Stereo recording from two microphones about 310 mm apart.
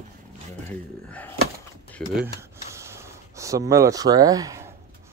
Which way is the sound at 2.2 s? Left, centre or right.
Centre.